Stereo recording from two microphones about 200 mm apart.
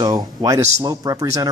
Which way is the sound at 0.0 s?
20° right (ahead or behind).